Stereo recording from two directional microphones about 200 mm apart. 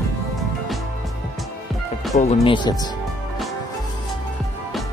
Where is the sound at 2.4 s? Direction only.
20° left (ahead or behind).